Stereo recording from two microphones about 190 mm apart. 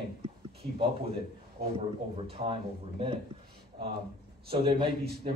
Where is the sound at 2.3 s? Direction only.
30° right (ahead or behind).